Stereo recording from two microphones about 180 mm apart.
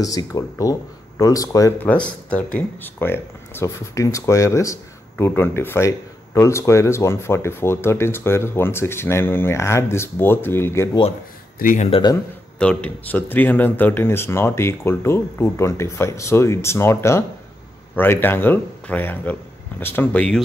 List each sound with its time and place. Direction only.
0.0 s speech: 20° left (ahead or behind)
11.6 s speech: 45° left (ahead or behind)
11.9 s a man's voice: 25° left (ahead or behind)
12.5 s speech: 5° left (ahead or behind)